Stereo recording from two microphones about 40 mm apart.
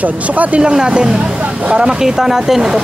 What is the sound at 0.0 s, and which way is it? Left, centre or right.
Speech, right.